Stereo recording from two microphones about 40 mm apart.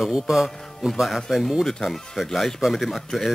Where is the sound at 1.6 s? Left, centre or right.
Centre.